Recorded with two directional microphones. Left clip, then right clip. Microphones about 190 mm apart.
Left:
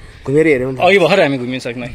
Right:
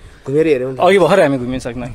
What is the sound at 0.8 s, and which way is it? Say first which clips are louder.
A man's voice: right 1 dB; 25° right (ahead or behind).